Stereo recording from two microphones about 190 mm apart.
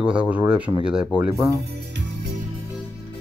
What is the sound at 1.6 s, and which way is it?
Music, 60° right (ahead or behind).